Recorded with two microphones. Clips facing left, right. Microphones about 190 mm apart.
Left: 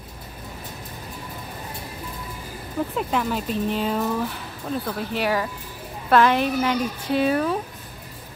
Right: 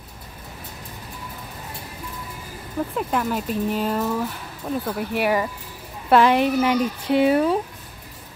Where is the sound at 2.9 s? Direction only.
5° right (ahead or behind).